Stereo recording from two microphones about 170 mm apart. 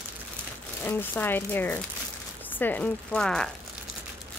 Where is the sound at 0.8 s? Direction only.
10° left (ahead or behind).